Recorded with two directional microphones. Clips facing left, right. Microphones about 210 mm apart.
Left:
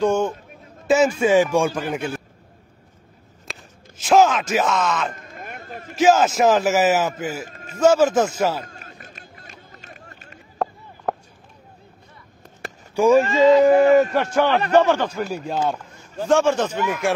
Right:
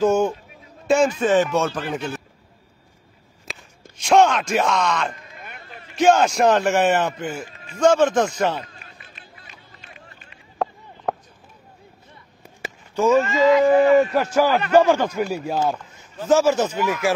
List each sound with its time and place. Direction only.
0.0 s speech: 5° right (ahead or behind)
0.8 s a man's voice: 5° left (ahead or behind)
3.4 s groan: centre (ahead or behind)
5.1 s a sound: 45° left (ahead or behind)
5.9 s a man's voice: centre (ahead or behind)
7.4 s a sound: 45° left (ahead or behind)
7.8 s a man's voice: 5° left (ahead or behind)
8.6 s run: 45° left (ahead or behind)
11.1 s a sound: centre (ahead or behind)
12.9 s speech: 10° left (ahead or behind)
13.2 s speech: 35° left (ahead or behind)
14.1 s a man's voice: centre (ahead or behind)